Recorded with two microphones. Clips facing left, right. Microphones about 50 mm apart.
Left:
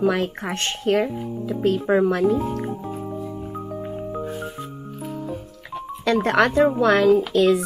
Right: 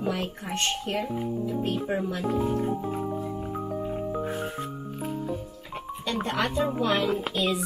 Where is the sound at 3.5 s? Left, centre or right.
Centre.